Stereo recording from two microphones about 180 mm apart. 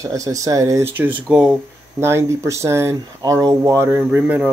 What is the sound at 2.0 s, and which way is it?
Speech, 15° right (ahead or behind).